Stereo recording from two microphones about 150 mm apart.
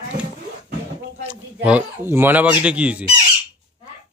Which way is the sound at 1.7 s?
10° right (ahead or behind).